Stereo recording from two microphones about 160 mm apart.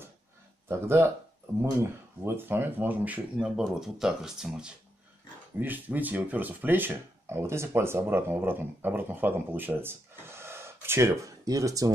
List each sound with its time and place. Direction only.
0.7 s speech: 15° right (ahead or behind)